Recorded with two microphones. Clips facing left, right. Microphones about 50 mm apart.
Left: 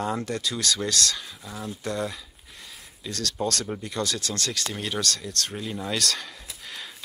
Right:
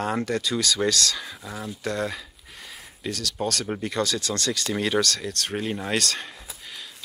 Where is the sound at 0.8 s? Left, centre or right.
Right.